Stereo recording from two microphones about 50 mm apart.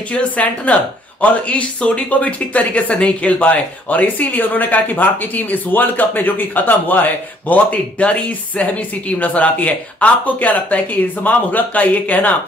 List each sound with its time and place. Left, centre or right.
0.1 s speech: left